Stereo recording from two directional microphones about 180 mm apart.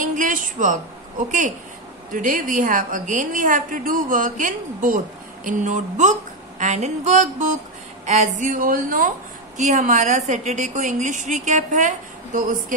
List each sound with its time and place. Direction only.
0.0 s a sound: 45° right (ahead or behind)
2.1 s a woman's voice: 50° right (ahead or behind)
6.6 s music: 40° right (ahead or behind)
8.0 s a woman's voice: 40° right (ahead or behind)